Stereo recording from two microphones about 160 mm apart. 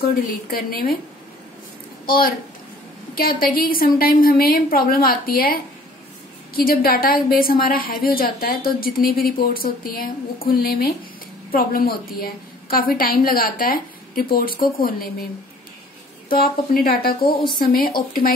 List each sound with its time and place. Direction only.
0.5 s a woman's voice: 65° left (ahead or behind)
2.0 s a woman's voice: 65° left (ahead or behind)
16.3 s a woman's voice: 65° left (ahead or behind)